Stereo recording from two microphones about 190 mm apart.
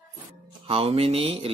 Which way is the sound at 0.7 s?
30° right (ahead or behind).